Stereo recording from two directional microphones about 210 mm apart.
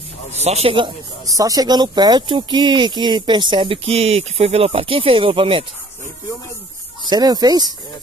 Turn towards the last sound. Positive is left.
turn(degrees=-20)  # may be behind; listen again after turning